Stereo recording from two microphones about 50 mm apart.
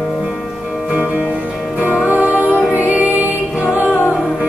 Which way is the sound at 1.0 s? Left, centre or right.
Right.